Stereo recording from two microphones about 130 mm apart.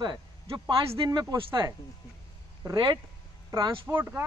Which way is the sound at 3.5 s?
25° right (ahead or behind).